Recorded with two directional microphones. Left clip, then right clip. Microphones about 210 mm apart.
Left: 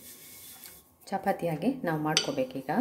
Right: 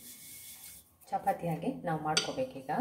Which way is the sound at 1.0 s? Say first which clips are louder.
Left 3 dB; 50° left (ahead or behind).